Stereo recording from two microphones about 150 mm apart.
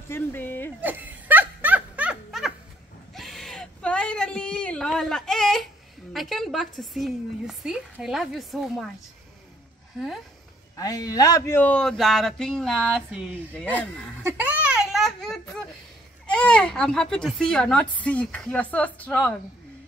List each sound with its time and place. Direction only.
0.1 s a woman's voice: 15° left (ahead or behind)
0.7 s laughter: 10° right (ahead or behind)
3.2 s a sound: centre (ahead or behind)
6.1 s a woman's voice: centre (ahead or behind)
10.8 s a man's voice: 25° left (ahead or behind); by 13.7 s centre (ahead or behind)
14.2 s a sound: 10° right (ahead or behind); by 15.4 s 5° left (ahead or behind)
16.3 s a man's voice: 5° left (ahead or behind)